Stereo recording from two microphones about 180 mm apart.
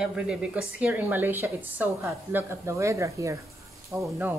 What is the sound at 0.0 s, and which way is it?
Speech, 5° right (ahead or behind).